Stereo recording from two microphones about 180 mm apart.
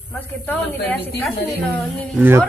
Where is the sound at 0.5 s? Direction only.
10° left (ahead or behind).